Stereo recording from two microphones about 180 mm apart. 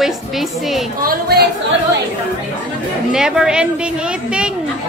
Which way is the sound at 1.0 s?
60° right (ahead or behind).